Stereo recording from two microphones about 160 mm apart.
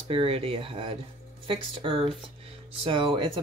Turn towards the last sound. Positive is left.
turn(degrees=-30)  # may be behind; listen again after turning